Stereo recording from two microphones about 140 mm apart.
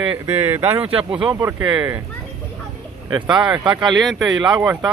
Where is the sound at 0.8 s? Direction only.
40° right (ahead or behind).